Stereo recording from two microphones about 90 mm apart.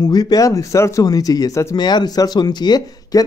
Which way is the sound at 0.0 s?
45° left (ahead or behind).